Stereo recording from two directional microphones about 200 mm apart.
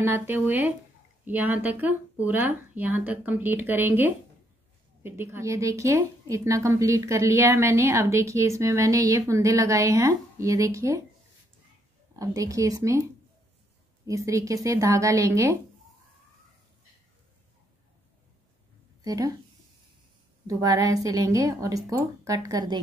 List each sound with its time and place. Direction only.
0.0 s a woman's voice: 10° right (ahead or behind)
12.2 s a woman's voice: 15° right (ahead or behind)
14.0 s a woman's voice: 15° right (ahead or behind)
19.0 s a woman's voice: 20° right (ahead or behind)
20.4 s a woman's voice: 15° right (ahead or behind)